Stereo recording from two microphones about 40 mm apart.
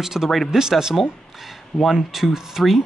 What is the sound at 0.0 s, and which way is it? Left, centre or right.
Speech, centre.